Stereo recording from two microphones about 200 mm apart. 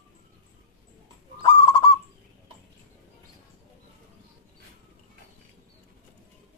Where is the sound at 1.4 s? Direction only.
20° left (ahead or behind).